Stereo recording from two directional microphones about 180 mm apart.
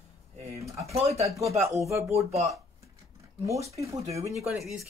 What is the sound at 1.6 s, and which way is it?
Speech, 15° right (ahead or behind).